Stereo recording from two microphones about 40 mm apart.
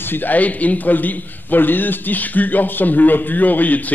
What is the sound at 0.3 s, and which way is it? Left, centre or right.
A man's voice, left.